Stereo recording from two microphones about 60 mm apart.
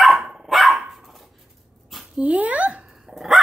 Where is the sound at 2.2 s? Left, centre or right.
Right.